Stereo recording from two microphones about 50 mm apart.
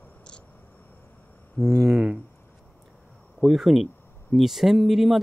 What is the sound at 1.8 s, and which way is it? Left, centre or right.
Speech, right.